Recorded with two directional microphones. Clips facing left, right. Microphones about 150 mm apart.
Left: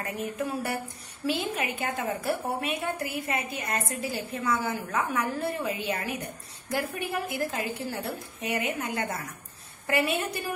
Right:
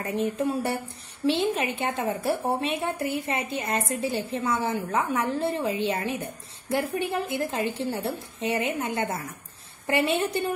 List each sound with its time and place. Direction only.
0.0 s a woman's voice: 25° right (ahead or behind)